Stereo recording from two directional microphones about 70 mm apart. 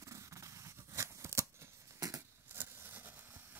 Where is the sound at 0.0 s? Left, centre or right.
Right.